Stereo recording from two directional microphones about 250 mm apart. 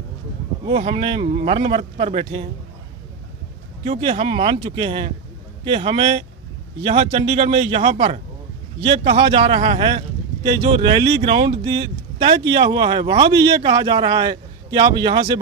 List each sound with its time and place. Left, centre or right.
0.7 s a man's voice: right
3.8 s a man's voice: right